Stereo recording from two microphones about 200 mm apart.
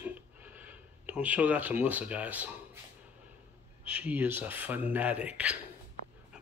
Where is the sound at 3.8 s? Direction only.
5° right (ahead or behind).